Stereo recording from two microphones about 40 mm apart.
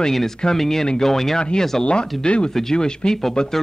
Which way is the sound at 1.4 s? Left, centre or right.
Left.